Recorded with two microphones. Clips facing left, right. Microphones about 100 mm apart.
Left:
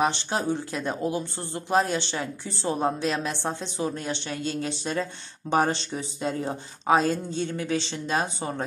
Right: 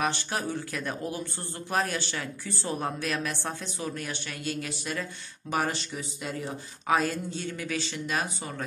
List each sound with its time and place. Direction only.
0.0 s a woman's voice: 25° left (ahead or behind)